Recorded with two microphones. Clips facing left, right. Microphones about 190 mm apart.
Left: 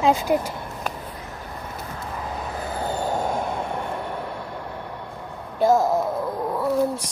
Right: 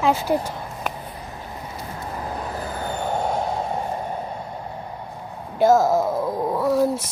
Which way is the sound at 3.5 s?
65° left (ahead or behind).